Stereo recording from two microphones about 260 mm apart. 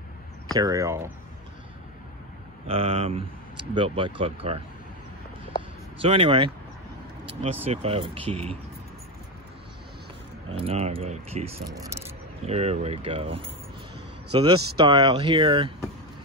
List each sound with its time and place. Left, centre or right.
0.6 s speech: centre
2.7 s speech: right
5.9 s speech: right
10.5 s speech: right
11.7 s speech: centre
12.4 s speech: right